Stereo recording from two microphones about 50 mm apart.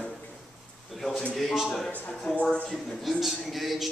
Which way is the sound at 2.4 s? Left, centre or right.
Left.